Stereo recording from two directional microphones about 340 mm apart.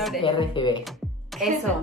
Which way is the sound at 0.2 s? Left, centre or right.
Centre.